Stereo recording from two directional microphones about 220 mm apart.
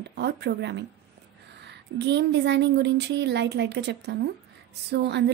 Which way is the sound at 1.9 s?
50° right (ahead or behind).